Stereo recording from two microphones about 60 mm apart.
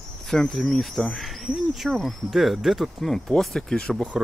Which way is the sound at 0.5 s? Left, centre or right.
Centre.